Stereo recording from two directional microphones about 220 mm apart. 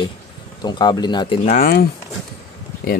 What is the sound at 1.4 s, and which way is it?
Speech, 35° left (ahead or behind).